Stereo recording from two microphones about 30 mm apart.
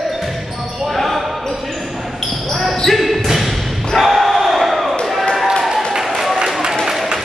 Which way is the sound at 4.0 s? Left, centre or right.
Centre.